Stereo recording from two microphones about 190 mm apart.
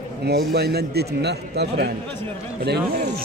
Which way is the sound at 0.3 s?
55° right (ahead or behind).